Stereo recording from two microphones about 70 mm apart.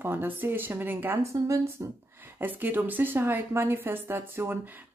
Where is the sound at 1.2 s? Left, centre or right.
Right.